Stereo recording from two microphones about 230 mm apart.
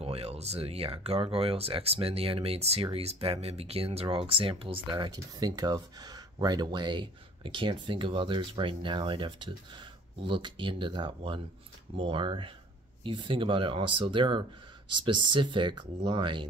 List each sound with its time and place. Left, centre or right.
0.0 s speech: right